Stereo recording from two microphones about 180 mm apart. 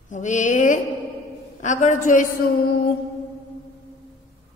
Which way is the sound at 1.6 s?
45° left (ahead or behind).